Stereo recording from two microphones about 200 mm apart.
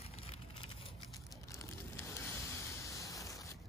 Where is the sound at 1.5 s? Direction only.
15° left (ahead or behind).